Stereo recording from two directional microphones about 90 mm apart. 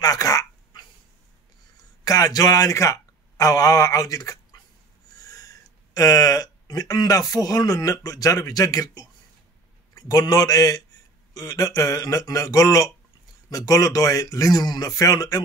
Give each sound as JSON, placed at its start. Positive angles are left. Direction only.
{"t": 0.0, "sound": "dog", "side_deg": 45}
{"t": 2.0, "sound": "speech", "side_deg": 45}
{"t": 5.2, "sound": "a sound", "side_deg": 40}
{"t": 5.9, "sound": "a man's voice", "side_deg": 45}